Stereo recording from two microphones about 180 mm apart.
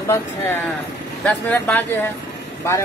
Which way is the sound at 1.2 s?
5° left (ahead or behind).